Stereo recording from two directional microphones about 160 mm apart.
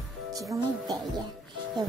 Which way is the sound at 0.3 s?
20° right (ahead or behind).